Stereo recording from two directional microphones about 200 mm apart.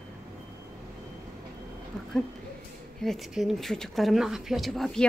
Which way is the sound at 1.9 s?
5° left (ahead or behind).